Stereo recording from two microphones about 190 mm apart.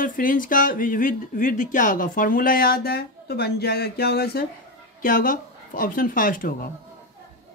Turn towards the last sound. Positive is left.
turn(degrees=45)  # may be behind; listen again after turning